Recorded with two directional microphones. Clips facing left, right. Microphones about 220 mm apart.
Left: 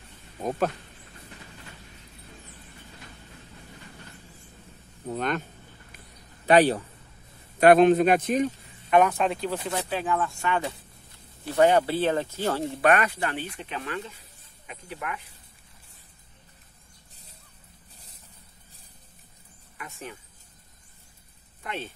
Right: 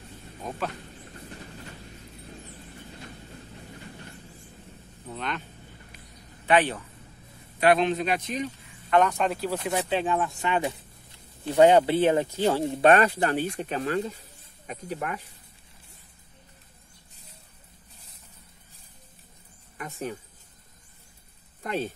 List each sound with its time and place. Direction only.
0.4 s speech: 45° left (ahead or behind)
5.0 s a man's voice: 45° left (ahead or behind)
6.4 s a man's voice: 40° left (ahead or behind)
8.9 s speech: 5° left (ahead or behind)
9.7 s speech: 25° right (ahead or behind)
12.9 s speech: 35° right (ahead or behind)
19.8 s speech: 40° right (ahead or behind)
21.6 s speech: 40° right (ahead or behind)